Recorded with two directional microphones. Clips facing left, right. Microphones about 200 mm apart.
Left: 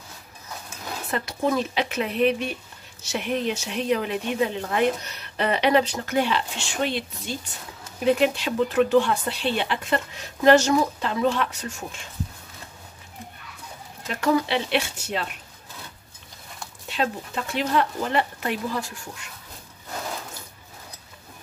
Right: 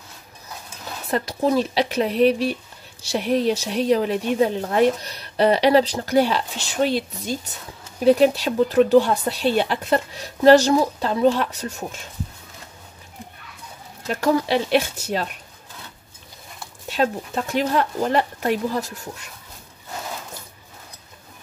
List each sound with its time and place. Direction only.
1.1 s speech: 35° right (ahead or behind)
14.0 s speech: 40° right (ahead or behind)
16.9 s speech: 45° right (ahead or behind)